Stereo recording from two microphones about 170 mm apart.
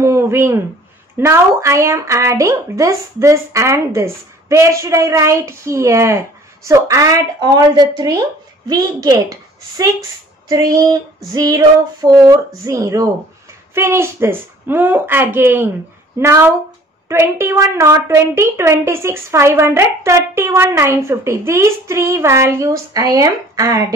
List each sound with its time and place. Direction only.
0.0 s a sound: 15° right (ahead or behind)
1.1 s speech: 15° right (ahead or behind)
8.6 s female singing: 20° right (ahead or behind)
13.7 s speech: 15° right (ahead or behind)